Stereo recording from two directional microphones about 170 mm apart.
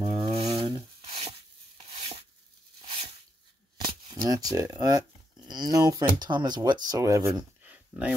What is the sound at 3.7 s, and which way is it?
Speech, 25° right (ahead or behind).